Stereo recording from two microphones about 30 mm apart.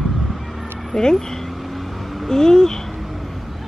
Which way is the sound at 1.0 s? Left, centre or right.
Centre.